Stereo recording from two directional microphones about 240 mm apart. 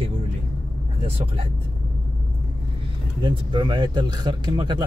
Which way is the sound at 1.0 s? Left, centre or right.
Right.